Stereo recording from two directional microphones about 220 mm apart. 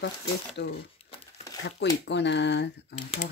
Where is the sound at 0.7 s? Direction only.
25° left (ahead or behind).